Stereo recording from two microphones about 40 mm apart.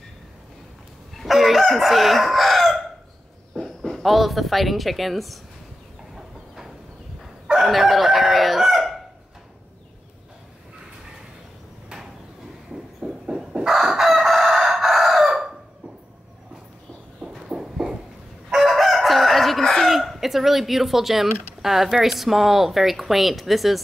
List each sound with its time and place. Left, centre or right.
1.1 s chicken: centre
3.5 s speech: centre
6.1 s train: centre
7.6 s chicken: centre
13.0 s a sound: centre
13.7 s chicken: centre
17.5 s a sound: centre
18.5 s crowing: centre
19.9 s speech: centre